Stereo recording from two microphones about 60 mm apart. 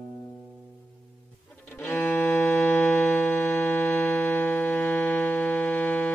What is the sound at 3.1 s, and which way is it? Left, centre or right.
Music, left.